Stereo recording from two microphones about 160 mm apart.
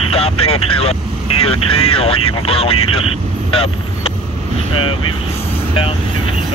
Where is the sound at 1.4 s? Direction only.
35° left (ahead or behind).